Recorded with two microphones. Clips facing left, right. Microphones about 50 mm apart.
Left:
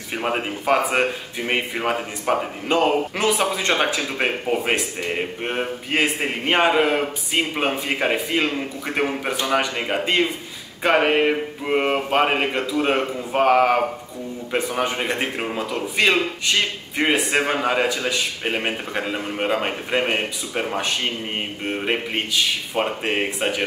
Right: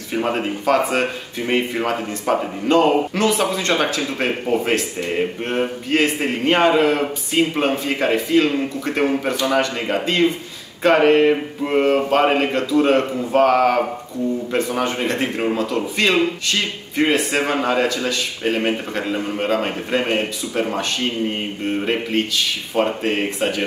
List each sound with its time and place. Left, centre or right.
0.2 s speech: centre